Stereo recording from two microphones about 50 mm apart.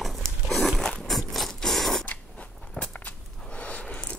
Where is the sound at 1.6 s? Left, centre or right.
Centre.